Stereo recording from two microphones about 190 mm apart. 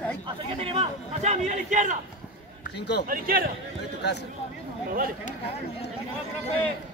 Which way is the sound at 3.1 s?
50° right (ahead or behind).